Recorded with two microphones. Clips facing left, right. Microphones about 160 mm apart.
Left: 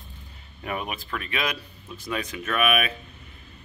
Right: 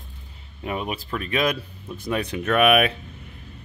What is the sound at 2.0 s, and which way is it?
Speech, 60° right (ahead or behind).